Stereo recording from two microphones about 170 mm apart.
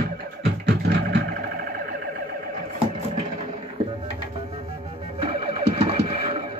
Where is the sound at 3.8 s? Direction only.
30° right (ahead or behind).